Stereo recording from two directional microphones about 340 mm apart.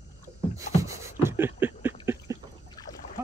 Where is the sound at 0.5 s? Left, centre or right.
Centre.